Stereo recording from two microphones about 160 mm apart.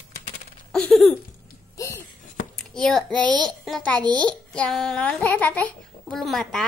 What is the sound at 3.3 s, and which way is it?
Speech, 30° right (ahead or behind).